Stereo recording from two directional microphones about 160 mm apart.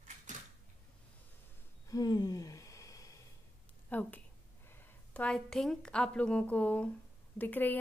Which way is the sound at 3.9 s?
10° left (ahead or behind).